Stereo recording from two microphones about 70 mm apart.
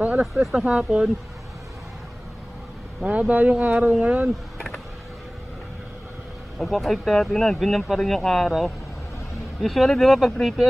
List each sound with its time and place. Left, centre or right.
0.0 s a sound: centre
0.3 s speech: centre
0.7 s speech: centre
3.0 s speech: right
6.6 s speech: centre